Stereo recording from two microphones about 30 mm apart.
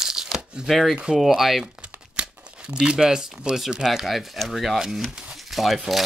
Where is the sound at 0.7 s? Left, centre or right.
Centre.